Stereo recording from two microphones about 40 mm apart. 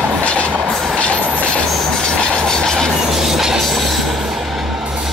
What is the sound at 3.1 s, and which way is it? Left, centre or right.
Train, centre.